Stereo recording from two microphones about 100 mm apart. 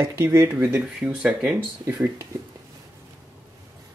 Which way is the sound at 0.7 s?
10° right (ahead or behind).